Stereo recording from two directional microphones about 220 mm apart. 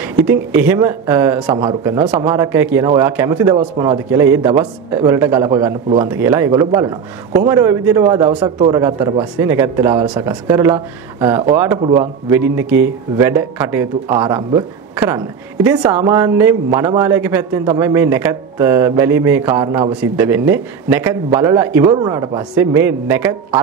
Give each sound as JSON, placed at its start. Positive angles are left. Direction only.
{"t": 0.3, "sound": "a man's voice", "side_deg": -10}